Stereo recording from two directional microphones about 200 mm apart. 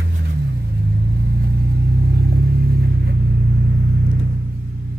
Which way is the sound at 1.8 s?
55° right (ahead or behind).